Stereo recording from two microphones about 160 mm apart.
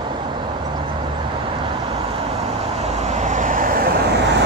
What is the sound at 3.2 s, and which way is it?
Vehicle, 50° right (ahead or behind).